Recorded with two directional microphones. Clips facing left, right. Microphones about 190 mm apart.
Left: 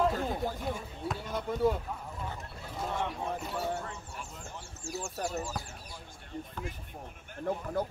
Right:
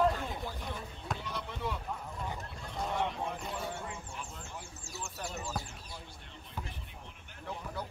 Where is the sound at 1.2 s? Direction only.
45° left (ahead or behind).